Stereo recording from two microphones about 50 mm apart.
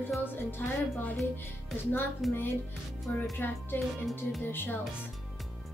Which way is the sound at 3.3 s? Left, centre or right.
Left.